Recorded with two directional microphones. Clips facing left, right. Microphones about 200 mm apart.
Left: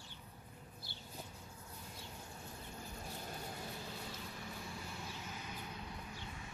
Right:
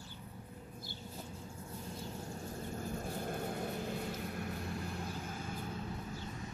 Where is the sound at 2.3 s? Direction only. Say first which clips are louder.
Right 9 dB; 45° right (ahead or behind).